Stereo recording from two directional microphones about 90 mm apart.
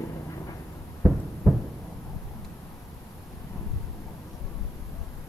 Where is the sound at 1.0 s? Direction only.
5° right (ahead or behind).